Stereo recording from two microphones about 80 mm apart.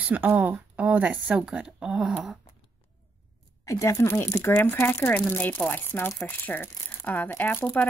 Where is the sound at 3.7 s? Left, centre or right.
Left.